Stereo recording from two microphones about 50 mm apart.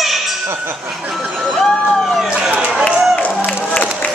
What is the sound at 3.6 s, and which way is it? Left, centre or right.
Music, left.